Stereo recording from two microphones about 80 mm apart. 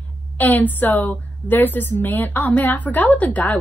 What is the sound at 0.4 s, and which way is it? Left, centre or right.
A woman's voice, left.